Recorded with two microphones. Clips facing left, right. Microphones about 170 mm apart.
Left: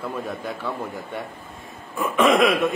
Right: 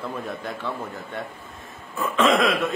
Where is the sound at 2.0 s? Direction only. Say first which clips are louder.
Left 2 dB; 15° left (ahead or behind).